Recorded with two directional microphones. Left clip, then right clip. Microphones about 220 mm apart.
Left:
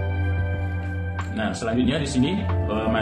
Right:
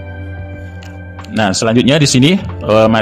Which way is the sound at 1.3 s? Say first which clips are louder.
Right 13 dB; 50° right (ahead or behind).